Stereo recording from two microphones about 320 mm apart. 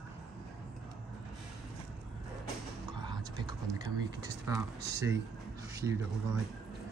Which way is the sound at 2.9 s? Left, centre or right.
Centre.